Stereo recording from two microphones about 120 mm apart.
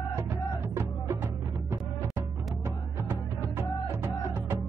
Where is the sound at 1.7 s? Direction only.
20° right (ahead or behind).